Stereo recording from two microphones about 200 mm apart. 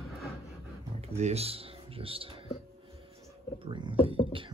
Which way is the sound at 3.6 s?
25° right (ahead or behind).